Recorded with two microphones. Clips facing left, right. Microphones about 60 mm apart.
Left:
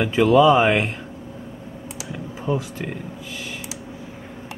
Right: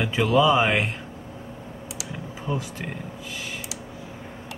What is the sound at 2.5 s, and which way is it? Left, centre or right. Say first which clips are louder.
Speech: left 5 dB; centre.